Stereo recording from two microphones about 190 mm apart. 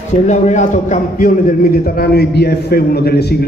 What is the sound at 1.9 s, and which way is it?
A man's voice, 55° left (ahead or behind).